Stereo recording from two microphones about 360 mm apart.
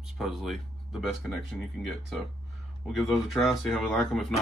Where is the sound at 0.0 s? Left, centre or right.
Centre.